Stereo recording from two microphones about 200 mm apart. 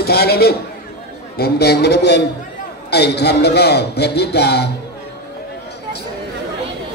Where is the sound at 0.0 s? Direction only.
50° left (ahead or behind).